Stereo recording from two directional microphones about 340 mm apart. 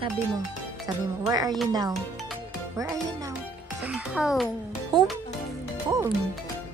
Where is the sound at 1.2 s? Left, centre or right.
Centre.